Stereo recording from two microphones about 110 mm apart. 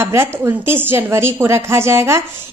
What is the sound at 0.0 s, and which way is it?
A woman's voice, 25° right (ahead or behind).